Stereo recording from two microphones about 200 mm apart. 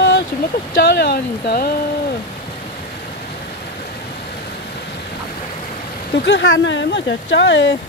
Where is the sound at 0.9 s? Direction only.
55° left (ahead or behind).